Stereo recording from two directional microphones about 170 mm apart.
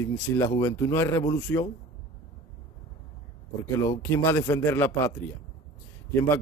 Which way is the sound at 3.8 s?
15° left (ahead or behind).